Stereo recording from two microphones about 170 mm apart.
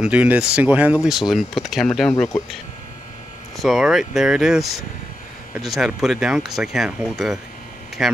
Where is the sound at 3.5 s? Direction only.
Centre (ahead or behind).